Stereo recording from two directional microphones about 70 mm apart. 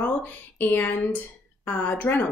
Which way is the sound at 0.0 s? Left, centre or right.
Left.